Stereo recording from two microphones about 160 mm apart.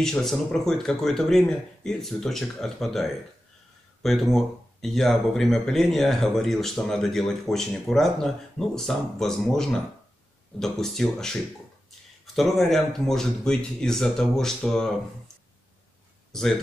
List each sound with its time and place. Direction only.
0.0 s speech: 5° left (ahead or behind)
12.4 s speech: centre (ahead or behind)
16.3 s a sound: 5° left (ahead or behind)